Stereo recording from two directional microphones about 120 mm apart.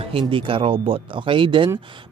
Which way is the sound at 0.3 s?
50° right (ahead or behind).